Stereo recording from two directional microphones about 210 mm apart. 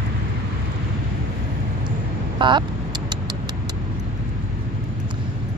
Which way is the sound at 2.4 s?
20° right (ahead or behind).